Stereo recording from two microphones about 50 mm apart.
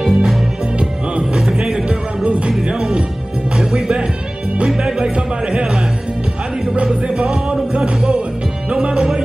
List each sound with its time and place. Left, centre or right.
0.0 s music: centre
0.7 s music: right
1.4 s music: centre
1.9 s music: right
6.7 s music: centre
8.8 s music: centre